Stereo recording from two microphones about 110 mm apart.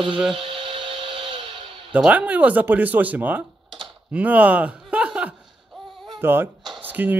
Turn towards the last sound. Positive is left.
turn(degrees=-15)  # may be behind; listen again after turning